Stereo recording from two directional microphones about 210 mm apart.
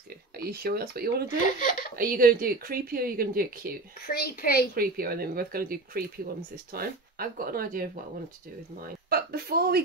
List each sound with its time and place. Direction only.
0.4 s speech: 45° right (ahead or behind)
1.6 s speech: 40° left (ahead or behind)
2.0 s speech: 45° right (ahead or behind)
4.1 s speech: 45° left (ahead or behind)
4.7 s speech: 45° right (ahead or behind)